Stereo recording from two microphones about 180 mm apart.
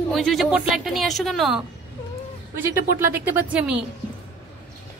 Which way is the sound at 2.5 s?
10° right (ahead or behind).